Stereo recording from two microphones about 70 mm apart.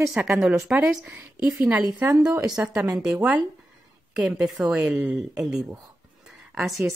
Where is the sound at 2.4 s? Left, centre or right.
Centre.